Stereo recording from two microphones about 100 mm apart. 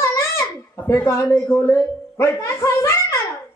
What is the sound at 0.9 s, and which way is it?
Speech, 30° left (ahead or behind).